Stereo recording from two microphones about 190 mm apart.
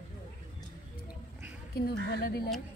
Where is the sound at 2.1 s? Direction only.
55° left (ahead or behind).